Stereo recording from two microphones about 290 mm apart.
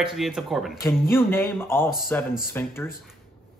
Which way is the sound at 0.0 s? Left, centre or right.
Centre.